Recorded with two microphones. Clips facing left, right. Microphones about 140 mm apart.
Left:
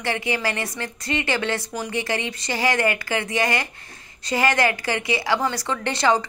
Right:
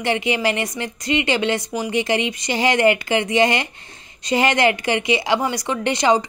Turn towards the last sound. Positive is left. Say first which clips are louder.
# right 3 dB
turn(degrees=-15)  # may be behind; listen again after turning